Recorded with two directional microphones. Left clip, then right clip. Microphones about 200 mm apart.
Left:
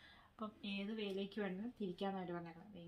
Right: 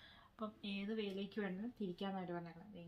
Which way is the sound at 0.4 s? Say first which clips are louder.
Even; 5° right (ahead or behind).